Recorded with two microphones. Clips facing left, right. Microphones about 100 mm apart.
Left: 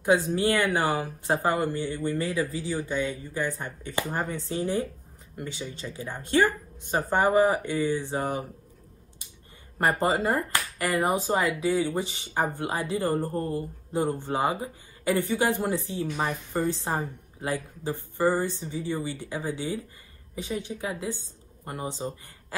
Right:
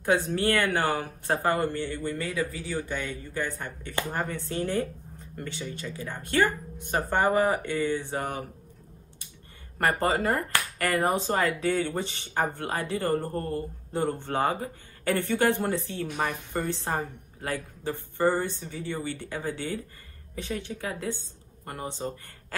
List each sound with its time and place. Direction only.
0.3 s speech: 15° left (ahead or behind)
9.8 s speech: 20° left (ahead or behind)
22.5 s a sound: 15° left (ahead or behind)